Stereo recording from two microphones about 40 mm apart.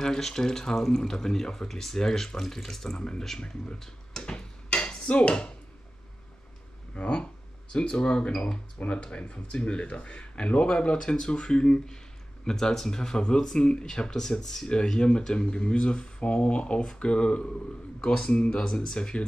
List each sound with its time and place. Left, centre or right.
0.0 s speech: centre
3.0 s speech: left
3.8 s a sound: centre
4.3 s a sound: left
7.0 s speech: left
8.7 s speech: left; by 19.2 s centre